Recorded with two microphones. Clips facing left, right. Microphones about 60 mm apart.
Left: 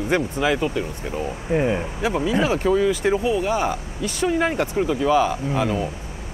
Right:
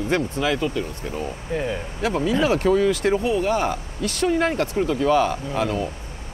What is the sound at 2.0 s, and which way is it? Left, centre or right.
Speech, centre.